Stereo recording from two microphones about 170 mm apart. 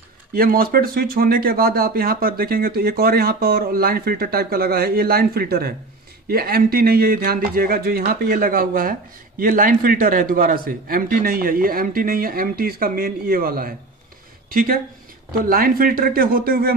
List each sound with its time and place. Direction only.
0.3 s speech: 60° right (ahead or behind)